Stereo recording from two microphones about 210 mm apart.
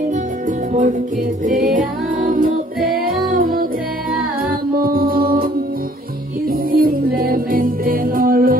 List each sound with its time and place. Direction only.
1.4 s music: 40° right (ahead or behind)
6.7 s music: 45° right (ahead or behind)